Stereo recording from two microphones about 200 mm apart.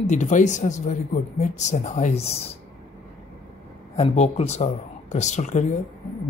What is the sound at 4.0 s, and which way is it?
Speech, 35° left (ahead or behind).